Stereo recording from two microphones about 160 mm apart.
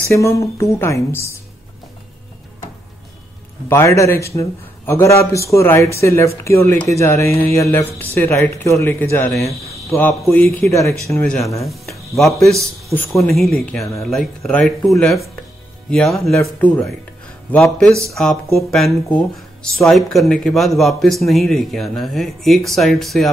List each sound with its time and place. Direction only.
0.1 s a man's voice: 20° left (ahead or behind)
3.6 s a man's voice: 15° left (ahead or behind)
10.2 s a man's voice: 5° left (ahead or behind)
11.6 s a man's voice: centre (ahead or behind)